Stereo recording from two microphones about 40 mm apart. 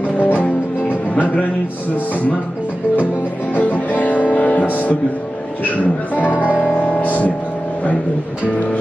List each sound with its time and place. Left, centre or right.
0.2 s music: left
3.5 s music: left
6.1 s speech: right
7.0 s speech: left